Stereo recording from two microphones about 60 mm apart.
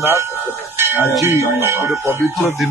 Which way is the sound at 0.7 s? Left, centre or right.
Right.